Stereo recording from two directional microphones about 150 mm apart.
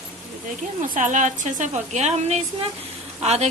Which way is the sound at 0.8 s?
55° right (ahead or behind).